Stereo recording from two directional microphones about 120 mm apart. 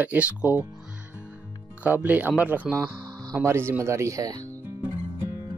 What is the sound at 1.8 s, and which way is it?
Speech, 15° right (ahead or behind).